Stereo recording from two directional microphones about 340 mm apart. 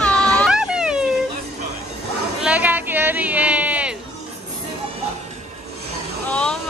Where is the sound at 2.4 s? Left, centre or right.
Centre.